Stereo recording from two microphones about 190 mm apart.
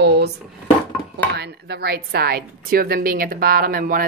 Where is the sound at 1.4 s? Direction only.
60° right (ahead or behind).